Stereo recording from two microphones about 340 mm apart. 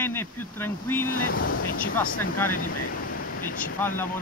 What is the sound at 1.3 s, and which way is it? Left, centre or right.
Speech, left.